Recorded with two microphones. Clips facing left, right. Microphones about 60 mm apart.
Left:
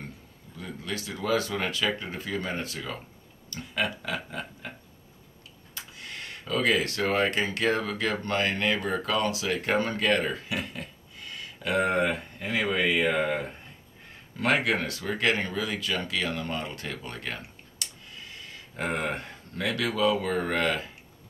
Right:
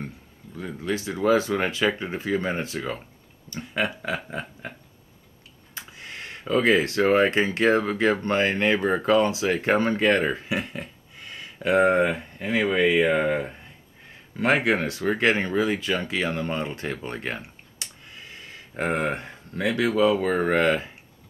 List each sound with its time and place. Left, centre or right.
0.6 s speech: right
5.8 s speech: right